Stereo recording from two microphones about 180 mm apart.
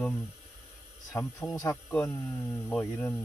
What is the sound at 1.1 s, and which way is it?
Speech, 15° left (ahead or behind).